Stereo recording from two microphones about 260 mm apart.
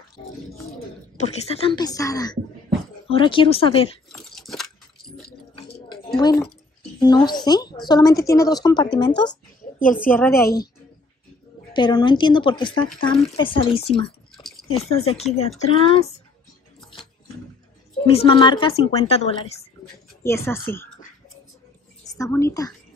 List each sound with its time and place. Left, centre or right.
0.2 s a woman's voice: centre
4.1 s a sound: centre
6.1 s a woman's voice: centre
11.7 s a woman's voice: centre
14.3 s a sound: centre
14.7 s a woman's voice: left
18.0 s a woman's voice: left
20.2 s a woman's voice: centre
22.1 s a woman's voice: centre